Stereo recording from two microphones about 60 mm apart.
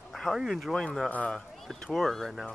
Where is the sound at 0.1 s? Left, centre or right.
Centre.